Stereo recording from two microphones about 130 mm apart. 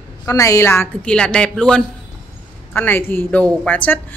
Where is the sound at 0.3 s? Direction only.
25° left (ahead or behind).